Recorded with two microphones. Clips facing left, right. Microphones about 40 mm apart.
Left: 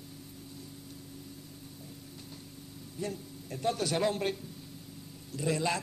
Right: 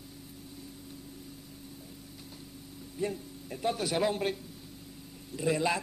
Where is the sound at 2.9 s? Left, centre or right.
Centre.